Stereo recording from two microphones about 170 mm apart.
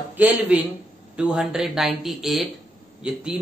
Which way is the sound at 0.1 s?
10° right (ahead or behind).